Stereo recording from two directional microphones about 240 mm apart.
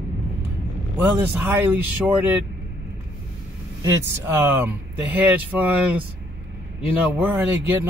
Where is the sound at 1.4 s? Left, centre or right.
Centre.